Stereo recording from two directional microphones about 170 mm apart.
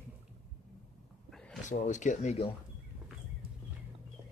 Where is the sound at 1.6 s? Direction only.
45° left (ahead or behind).